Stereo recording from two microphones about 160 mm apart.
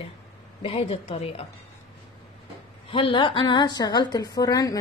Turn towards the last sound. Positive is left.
turn(degrees=25)  # may be behind; listen again after turning